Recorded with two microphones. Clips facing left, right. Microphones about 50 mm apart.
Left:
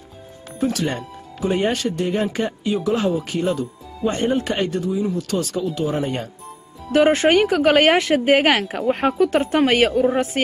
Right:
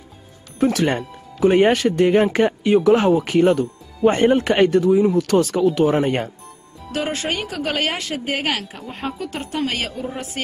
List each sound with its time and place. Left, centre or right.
0.6 s speech: right
5.9 s speech: right
6.9 s a woman's voice: left
8.7 s a woman's voice: left